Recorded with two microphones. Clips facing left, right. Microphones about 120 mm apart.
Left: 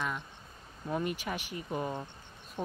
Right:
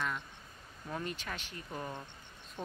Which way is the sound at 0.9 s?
10° left (ahead or behind).